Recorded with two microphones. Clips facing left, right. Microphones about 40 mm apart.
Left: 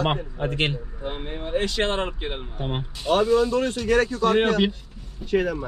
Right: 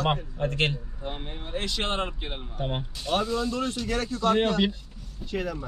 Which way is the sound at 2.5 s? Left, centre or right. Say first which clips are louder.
Right 2 dB; centre.